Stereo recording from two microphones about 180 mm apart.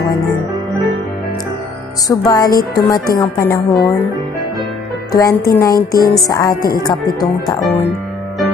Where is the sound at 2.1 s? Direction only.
20° left (ahead or behind).